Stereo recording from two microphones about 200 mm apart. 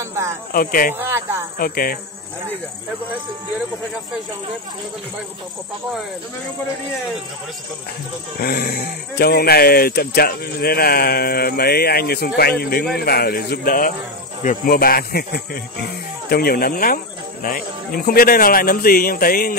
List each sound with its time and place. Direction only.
0.0 s snake: 15° right (ahead or behind)
0.5 s speech: 45° left (ahead or behind)
0.9 s speech: 10° right (ahead or behind)
1.6 s speech: 45° left (ahead or behind)
8.4 s speech: 50° left (ahead or behind)